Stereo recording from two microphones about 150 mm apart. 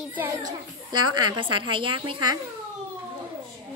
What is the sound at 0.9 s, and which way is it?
A woman's voice, 30° right (ahead or behind).